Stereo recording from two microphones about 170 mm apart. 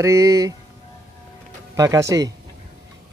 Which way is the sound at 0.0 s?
20° right (ahead or behind).